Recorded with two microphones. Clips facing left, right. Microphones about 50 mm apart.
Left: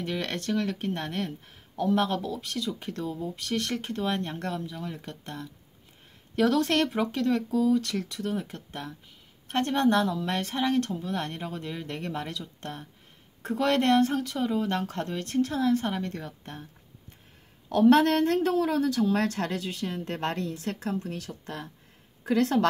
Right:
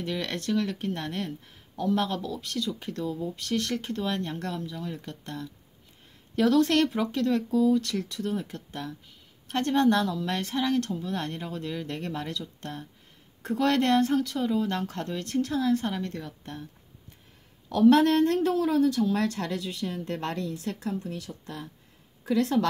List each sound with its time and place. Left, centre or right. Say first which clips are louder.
0.0 s speech: even; left
17.6 s a woman's voice: even; left